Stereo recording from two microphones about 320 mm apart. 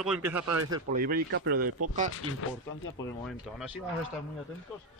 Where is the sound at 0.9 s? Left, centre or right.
Right.